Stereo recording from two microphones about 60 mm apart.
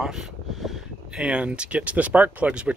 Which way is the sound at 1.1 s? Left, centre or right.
Centre.